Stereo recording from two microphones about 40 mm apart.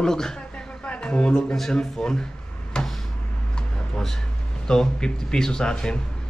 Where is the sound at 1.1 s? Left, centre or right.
Centre.